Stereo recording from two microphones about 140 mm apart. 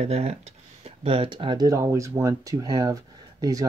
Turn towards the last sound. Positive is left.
turn(degrees=-25)  # may be behind; listen again after turning